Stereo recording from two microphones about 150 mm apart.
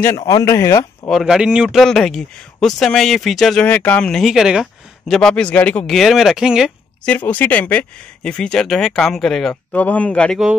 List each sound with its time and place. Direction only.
0.3 s speech: 20° left (ahead or behind)
1.0 s speech: centre (ahead or behind)
7.1 s speech: 10° left (ahead or behind)